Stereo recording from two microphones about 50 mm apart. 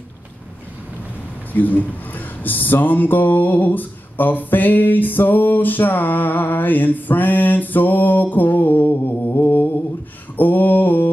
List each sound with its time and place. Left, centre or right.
1.5 s speech: left